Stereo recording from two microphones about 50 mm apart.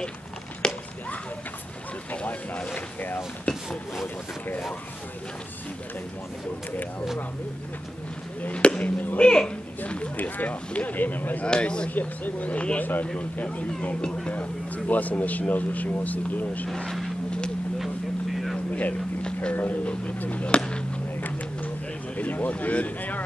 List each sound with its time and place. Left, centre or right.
0.6 s a sound: centre
2.2 s speech: left
3.5 s a sound: centre
8.4 s speech: left
9.2 s speech: centre; by 11.4 s left
11.4 s speech: centre
11.9 s speech: left
16.6 s speech: centre
17.7 s vehicle: centre
19.5 s speech: left; by 20.8 s centre
22.1 s speech: left